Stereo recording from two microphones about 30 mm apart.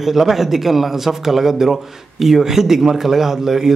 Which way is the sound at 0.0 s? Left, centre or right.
Centre.